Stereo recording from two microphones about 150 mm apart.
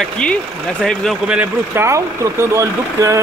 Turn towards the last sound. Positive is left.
turn(degrees=-20)  # may be behind; listen again after turning